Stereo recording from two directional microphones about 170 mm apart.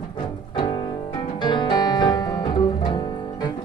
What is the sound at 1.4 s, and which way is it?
Music, 25° left (ahead or behind).